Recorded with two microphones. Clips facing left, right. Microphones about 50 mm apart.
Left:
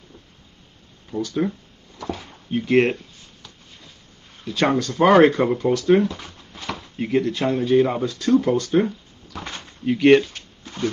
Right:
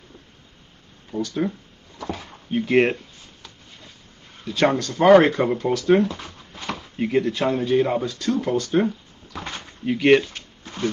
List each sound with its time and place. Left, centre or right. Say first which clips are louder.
1.2 s speech: left 1 dB; centre
2.5 s speech: even; centre
4.5 s speech: even; centre
10.3 s a sound: right 1 dB; right